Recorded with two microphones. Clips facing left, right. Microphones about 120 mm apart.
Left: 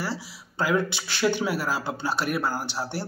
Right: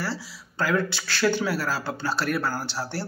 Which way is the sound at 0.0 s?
20° left (ahead or behind).